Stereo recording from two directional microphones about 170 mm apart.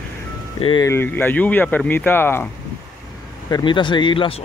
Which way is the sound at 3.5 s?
25° left (ahead or behind).